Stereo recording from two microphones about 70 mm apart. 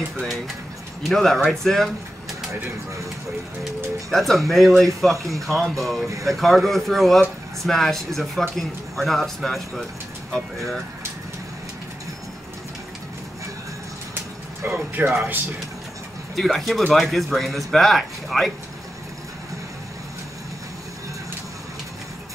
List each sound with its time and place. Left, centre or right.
1.0 s speech: centre
3.6 s speech: centre
14.7 s speech: right
16.3 s speech: centre